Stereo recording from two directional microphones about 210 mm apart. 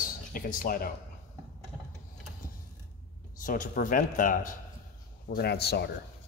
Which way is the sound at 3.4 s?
40° left (ahead or behind).